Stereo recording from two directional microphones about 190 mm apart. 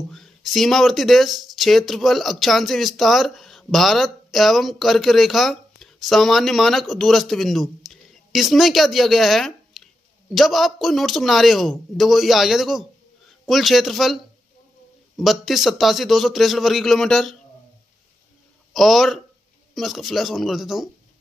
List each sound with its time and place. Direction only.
0.1 s speech: centre (ahead or behind)
15.1 s speech: centre (ahead or behind)
18.7 s speech: centre (ahead or behind)